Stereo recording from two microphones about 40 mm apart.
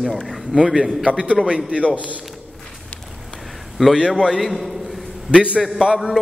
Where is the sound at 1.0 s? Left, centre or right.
Right.